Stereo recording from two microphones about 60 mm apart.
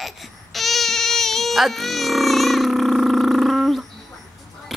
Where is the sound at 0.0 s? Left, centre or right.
Centre.